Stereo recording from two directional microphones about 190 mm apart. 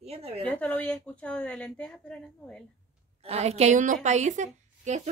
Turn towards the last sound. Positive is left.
turn(degrees=-40)  # may be behind; listen again after turning